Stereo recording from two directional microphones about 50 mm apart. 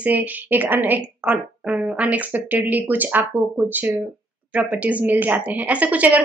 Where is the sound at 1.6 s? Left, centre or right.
Right.